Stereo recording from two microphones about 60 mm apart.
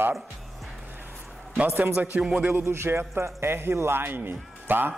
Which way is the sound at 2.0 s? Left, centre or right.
Centre.